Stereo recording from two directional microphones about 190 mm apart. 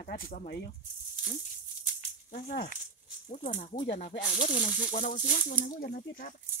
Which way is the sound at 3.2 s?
40° left (ahead or behind).